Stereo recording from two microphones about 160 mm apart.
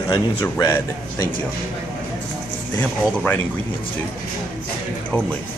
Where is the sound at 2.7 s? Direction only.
10° left (ahead or behind).